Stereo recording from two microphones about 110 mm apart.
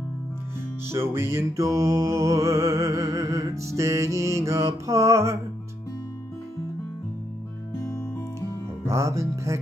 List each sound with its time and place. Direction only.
0.8 s music: 25° right (ahead or behind)
7.8 s music: 30° left (ahead or behind)
8.8 s music: 25° right (ahead or behind)